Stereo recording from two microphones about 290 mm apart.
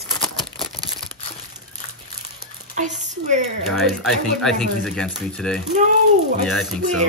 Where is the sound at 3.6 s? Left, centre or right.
Centre.